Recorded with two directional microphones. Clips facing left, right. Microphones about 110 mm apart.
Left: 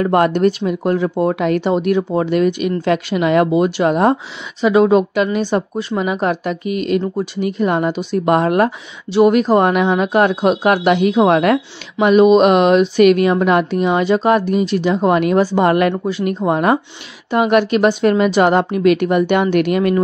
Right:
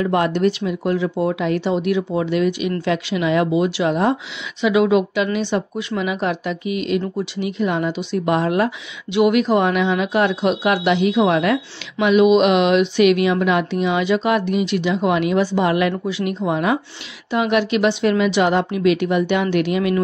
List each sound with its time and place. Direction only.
0.0 s speech: 50° left (ahead or behind)
9.1 s speech: 40° left (ahead or behind)